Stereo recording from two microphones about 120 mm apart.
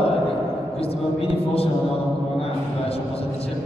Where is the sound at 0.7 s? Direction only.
55° left (ahead or behind).